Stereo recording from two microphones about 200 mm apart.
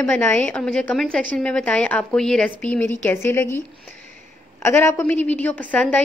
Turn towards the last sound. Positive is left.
turn(degrees=10)  # may be behind; listen again after turning